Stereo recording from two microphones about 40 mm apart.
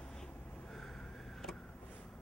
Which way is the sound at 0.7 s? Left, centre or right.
Centre.